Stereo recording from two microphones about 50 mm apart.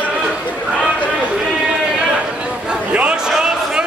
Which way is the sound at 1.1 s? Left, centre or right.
Centre.